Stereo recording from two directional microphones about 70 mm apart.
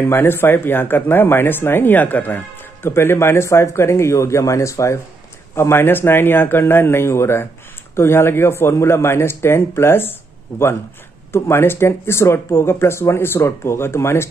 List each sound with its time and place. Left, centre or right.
0.1 s speech: left
11.3 s speech: left